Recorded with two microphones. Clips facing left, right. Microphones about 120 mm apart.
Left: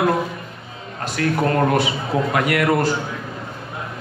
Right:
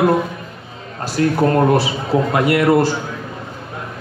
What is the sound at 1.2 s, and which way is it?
A man's voice, 25° right (ahead or behind).